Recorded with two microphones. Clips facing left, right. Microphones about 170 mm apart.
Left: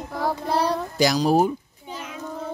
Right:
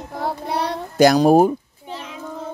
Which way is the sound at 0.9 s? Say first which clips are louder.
Right 8 dB; 55° right (ahead or behind).